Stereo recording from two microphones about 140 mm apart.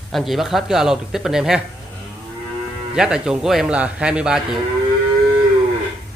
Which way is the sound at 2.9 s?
5° right (ahead or behind).